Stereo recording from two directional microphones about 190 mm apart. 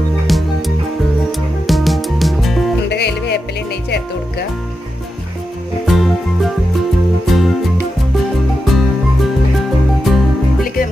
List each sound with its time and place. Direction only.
0.3 s music: centre (ahead or behind)
1.7 s music: centre (ahead or behind)
2.9 s music: 60° left (ahead or behind)
5.9 s music: centre (ahead or behind)
8.6 s music: centre (ahead or behind)